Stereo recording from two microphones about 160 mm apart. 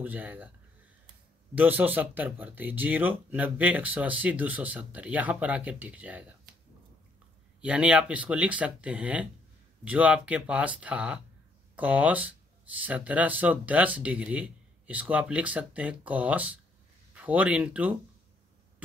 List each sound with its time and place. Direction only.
0.0 s speech: 10° right (ahead or behind)
1.5 s speech: 10° right (ahead or behind)
7.6 s speech: 10° right (ahead or behind)